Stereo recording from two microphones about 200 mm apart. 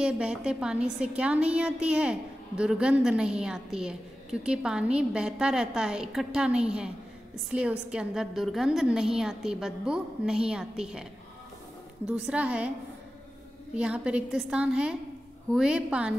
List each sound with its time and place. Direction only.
0.0 s a woman's voice: 5° right (ahead or behind)
12.1 s a woman's voice: 5° right (ahead or behind)
13.7 s a woman's voice: 5° right (ahead or behind)